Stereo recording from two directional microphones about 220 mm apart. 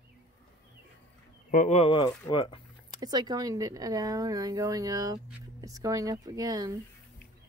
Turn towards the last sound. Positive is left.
turn(degrees=-15)  # may be behind; listen again after turning